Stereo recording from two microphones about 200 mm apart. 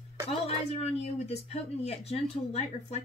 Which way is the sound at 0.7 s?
30° left (ahead or behind).